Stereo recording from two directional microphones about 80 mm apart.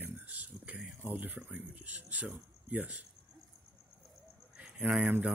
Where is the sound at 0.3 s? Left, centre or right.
Centre.